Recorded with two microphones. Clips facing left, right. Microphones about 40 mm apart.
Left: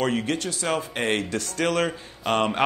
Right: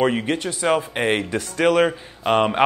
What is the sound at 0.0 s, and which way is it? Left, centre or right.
Speech, right.